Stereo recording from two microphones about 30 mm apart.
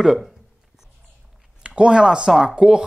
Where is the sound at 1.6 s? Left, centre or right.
Right.